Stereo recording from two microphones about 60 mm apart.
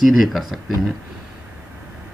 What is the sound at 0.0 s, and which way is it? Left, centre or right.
Speech, centre.